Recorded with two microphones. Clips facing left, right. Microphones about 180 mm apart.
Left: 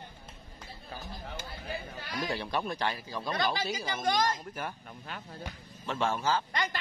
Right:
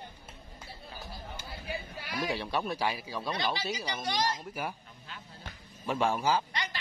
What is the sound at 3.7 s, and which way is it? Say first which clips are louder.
Speech: left 3 dB; 50° left (ahead or behind).